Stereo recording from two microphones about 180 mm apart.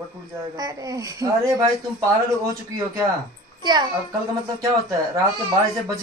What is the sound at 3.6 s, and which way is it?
Speech, 25° right (ahead or behind).